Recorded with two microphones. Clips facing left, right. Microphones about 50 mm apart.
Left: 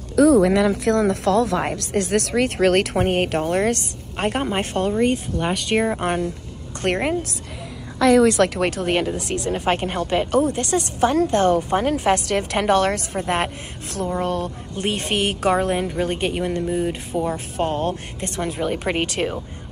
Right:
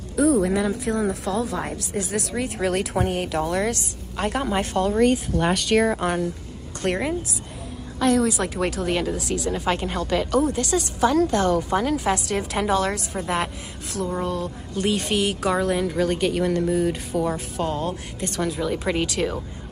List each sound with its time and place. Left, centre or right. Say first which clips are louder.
0.1 s speech: left 5 dB; left
3.0 s speech: left 4 dB; left
5.0 s speech: right 1 dB; centre
5.9 s speech: left 1 dB; left
6.8 s a woman's voice: left 3 dB; left
8.0 s speech: left 6 dB; left
8.5 s a woman's voice: left 3 dB; left
14.8 s a woman's voice: even; left
17.6 s speech: left 3 dB; left